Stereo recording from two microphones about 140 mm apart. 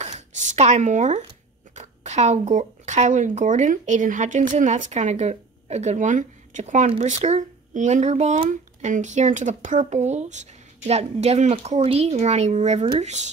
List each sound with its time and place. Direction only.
0.0 s speech: 60° right (ahead or behind)